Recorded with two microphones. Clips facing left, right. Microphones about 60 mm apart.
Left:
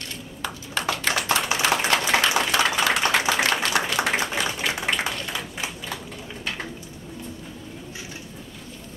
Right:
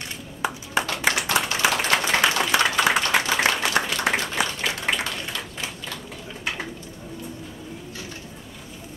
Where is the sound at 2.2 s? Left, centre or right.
Centre.